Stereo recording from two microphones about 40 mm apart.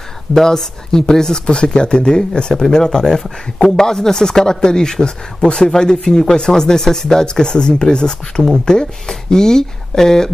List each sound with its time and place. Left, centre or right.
0.3 s speech: centre